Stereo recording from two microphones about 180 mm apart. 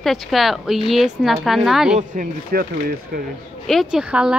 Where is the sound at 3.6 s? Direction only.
Centre (ahead or behind).